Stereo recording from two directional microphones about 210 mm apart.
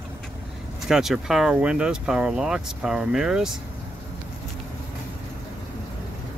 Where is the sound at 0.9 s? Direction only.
Centre (ahead or behind).